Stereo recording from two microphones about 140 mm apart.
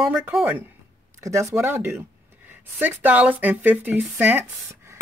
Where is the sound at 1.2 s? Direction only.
20° right (ahead or behind).